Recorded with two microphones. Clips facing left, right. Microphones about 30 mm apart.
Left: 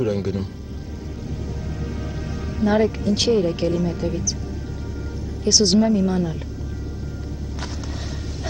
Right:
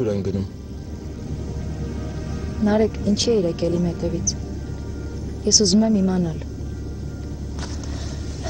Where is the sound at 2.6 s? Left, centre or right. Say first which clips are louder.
Even; centre.